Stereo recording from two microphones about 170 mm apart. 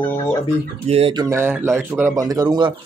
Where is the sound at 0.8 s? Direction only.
35° right (ahead or behind).